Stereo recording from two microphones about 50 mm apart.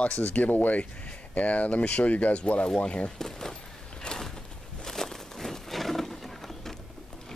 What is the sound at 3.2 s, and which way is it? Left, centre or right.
Speech, centre.